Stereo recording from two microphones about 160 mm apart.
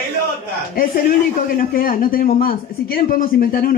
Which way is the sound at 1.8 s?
60° left (ahead or behind).